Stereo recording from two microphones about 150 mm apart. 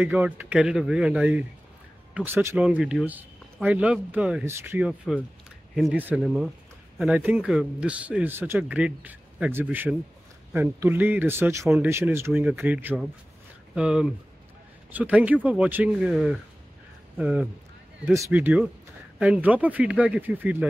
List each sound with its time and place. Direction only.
0.0 s speech: 10° right (ahead or behind)